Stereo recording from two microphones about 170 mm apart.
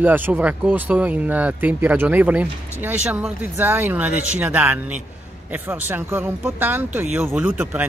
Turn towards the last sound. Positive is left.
turn(degrees=-10)  # may be behind; listen again after turning